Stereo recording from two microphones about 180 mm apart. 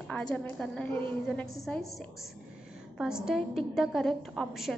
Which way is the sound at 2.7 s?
5° right (ahead or behind).